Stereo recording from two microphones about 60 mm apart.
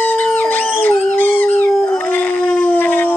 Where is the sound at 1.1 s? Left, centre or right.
Left.